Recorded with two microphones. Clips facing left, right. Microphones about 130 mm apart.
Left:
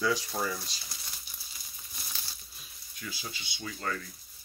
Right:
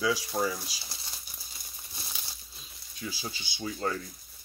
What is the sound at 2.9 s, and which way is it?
Speech, 30° right (ahead or behind).